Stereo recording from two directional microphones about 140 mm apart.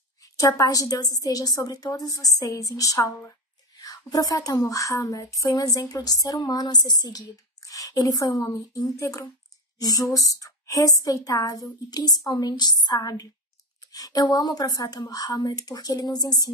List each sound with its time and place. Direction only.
0.2 s a woman's voice: 25° left (ahead or behind)